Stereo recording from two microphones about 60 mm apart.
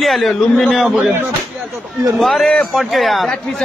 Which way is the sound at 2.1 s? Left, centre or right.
Centre.